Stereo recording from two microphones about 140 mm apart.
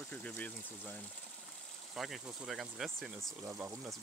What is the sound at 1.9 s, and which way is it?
Speech, 5° right (ahead or behind).